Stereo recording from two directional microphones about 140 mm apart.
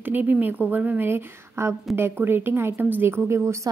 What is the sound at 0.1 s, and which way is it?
A woman's voice, 15° right (ahead or behind).